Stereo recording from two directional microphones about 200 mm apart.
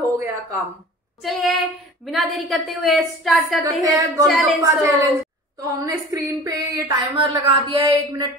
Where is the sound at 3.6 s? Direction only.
15° right (ahead or behind).